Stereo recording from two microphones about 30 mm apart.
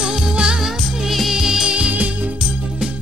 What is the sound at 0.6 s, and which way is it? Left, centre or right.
Music, centre.